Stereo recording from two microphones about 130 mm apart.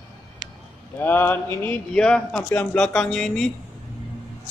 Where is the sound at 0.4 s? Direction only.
35° right (ahead or behind).